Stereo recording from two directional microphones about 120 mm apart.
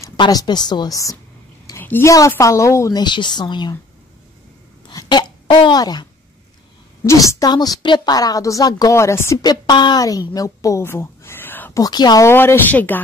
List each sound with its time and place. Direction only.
0.2 s a woman's voice: 35° left (ahead or behind)
1.8 s a woman's voice: 15° left (ahead or behind)
3.0 s a woman's voice: 40° left (ahead or behind)
4.8 s a sound: 40° left (ahead or behind)
7.1 s a woman's voice: 25° left (ahead or behind)
9.4 s a woman's voice: 35° left (ahead or behind); by 11.8 s 15° left (ahead or behind)
11.8 s a woman's voice: 35° left (ahead or behind)
12.3 s speech: 20° left (ahead or behind)